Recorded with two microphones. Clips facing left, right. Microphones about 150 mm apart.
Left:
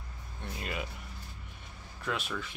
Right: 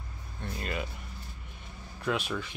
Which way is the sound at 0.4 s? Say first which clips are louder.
Right 3 dB; 10° left (ahead or behind).